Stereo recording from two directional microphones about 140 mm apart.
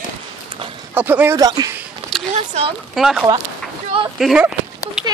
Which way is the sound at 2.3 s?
50° right (ahead or behind).